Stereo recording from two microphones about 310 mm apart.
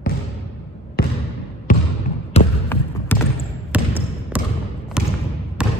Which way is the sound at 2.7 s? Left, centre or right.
Centre.